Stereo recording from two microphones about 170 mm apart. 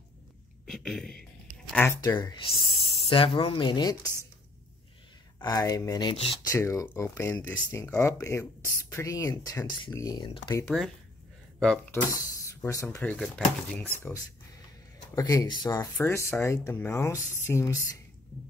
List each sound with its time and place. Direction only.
0.7 s speech: centre (ahead or behind)
2.0 s speech: 25° left (ahead or behind)
5.4 s speech: 20° left (ahead or behind)
11.9 s speech: 20° left (ahead or behind)
15.1 s speech: 20° left (ahead or behind)